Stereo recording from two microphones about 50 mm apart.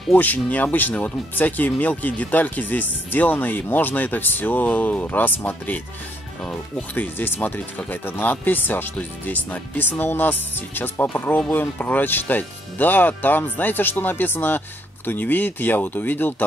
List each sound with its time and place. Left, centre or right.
0.1 s speech: left